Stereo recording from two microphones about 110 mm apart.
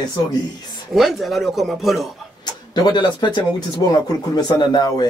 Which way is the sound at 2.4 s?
40° left (ahead or behind).